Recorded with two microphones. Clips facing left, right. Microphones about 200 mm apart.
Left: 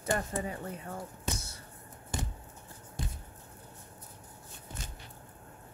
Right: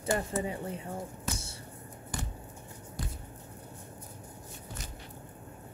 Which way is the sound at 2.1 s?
25° left (ahead or behind).